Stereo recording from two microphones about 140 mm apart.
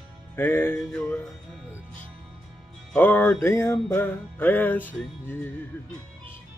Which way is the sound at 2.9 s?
15° left (ahead or behind).